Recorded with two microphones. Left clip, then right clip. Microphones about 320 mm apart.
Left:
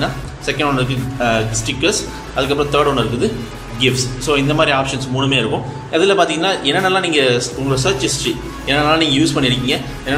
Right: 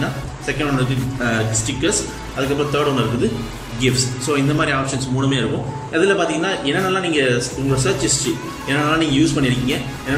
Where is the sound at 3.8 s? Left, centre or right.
Centre.